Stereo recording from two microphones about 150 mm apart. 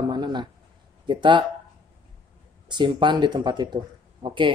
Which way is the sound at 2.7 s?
30° right (ahead or behind).